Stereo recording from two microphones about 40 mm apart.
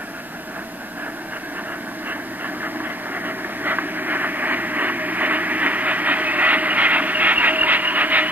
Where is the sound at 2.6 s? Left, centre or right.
Right.